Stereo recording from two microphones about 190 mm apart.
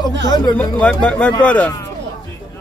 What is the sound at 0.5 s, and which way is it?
Speech, 5° left (ahead or behind).